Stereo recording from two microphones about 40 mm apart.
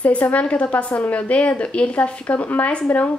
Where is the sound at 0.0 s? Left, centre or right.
Left.